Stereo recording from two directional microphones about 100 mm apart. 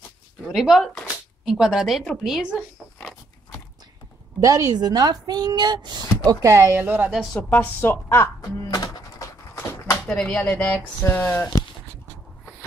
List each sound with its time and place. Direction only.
0.5 s a woman's voice: centre (ahead or behind)
4.4 s a woman's voice: 40° right (ahead or behind)
6.2 s speech: 30° right (ahead or behind)
6.8 s a woman's voice: 15° right (ahead or behind)
7.3 s a woman's voice: 20° left (ahead or behind)
8.4 s a sound: 40° left (ahead or behind)
9.6 s a sound: 20° left (ahead or behind)
10.0 s a woman's voice: 10° left (ahead or behind)